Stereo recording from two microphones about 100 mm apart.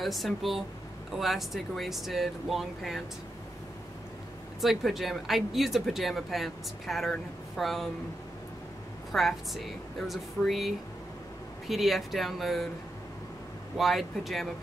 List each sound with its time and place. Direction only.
0.0 s speech: centre (ahead or behind)
4.6 s speech: centre (ahead or behind)
9.1 s speech: centre (ahead or behind)
13.7 s speech: centre (ahead or behind)